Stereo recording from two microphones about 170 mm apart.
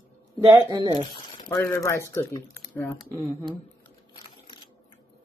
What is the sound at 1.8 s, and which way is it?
Speech, 15° left (ahead or behind).